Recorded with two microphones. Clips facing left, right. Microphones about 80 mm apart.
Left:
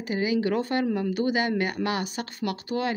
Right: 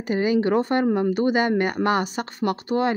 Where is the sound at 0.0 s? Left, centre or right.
Right.